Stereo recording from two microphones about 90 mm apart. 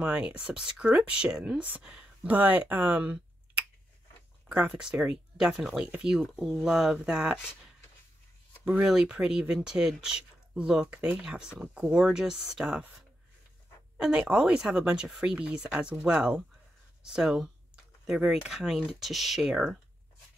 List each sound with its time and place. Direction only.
0.0 s speech: 15° right (ahead or behind)
8.8 s speech: 10° right (ahead or behind)
13.9 s speech: 10° right (ahead or behind)